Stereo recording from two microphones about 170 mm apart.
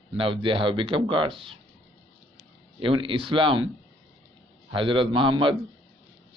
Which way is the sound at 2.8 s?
30° right (ahead or behind).